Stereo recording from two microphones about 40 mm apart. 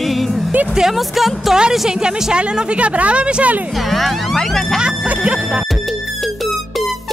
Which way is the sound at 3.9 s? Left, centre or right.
Centre.